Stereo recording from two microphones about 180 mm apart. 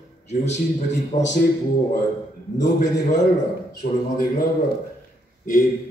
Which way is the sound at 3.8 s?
55° left (ahead or behind).